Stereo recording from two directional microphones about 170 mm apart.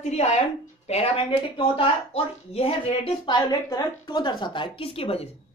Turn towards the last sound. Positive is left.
turn(degrees=35)  # may be behind; listen again after turning